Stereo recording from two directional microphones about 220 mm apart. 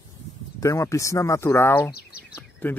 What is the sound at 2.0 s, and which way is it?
Bird, 45° left (ahead or behind).